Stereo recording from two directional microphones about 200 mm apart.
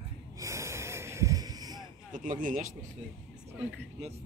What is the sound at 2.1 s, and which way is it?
Speech, 40° right (ahead or behind).